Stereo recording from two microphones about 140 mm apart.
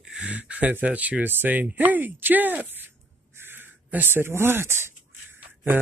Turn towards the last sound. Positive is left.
turn(degrees=-15)  # may be behind; listen again after turning